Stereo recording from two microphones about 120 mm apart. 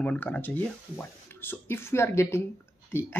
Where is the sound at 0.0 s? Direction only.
10° left (ahead or behind).